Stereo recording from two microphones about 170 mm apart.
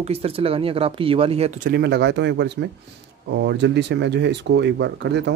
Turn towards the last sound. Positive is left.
turn(degrees=-90)